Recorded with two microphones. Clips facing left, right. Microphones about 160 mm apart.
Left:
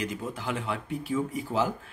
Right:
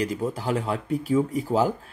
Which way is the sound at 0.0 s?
35° right (ahead or behind).